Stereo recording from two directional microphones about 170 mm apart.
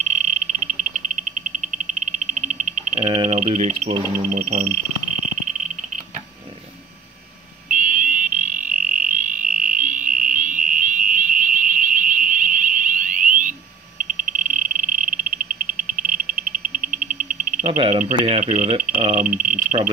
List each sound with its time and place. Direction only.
2.4 s cricket: 40° right (ahead or behind)
3.1 s speech: 30° right (ahead or behind)
3.3 s speech: 40° right (ahead or behind)
7.7 s fire alarm: 50° right (ahead or behind)
14.4 s cricket: 55° right (ahead or behind)
15.6 s a sound: 50° right (ahead or behind)
17.6 s speech: 35° right (ahead or behind)
18.4 s speech: 50° right (ahead or behind)
19.2 s speech: 5° right (ahead or behind)